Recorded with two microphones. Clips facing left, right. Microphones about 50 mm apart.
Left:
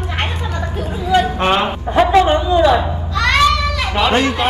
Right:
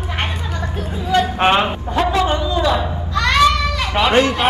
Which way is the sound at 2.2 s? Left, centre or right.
Left.